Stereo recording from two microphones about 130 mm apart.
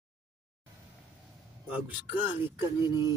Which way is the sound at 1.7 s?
15° right (ahead or behind).